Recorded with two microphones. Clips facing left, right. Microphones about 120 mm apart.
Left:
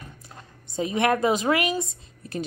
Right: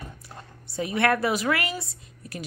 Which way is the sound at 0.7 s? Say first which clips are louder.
Left 1 dB; 20° left (ahead or behind).